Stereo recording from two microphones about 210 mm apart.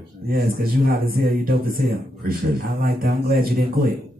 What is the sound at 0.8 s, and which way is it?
Speech, 45° right (ahead or behind).